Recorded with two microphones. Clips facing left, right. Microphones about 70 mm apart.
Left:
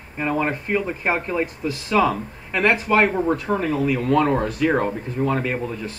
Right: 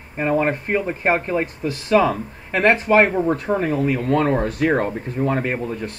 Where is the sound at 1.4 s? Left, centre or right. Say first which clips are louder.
Right 2 dB; right.